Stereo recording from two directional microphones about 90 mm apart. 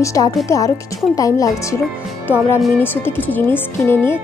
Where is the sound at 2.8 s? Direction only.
25° left (ahead or behind).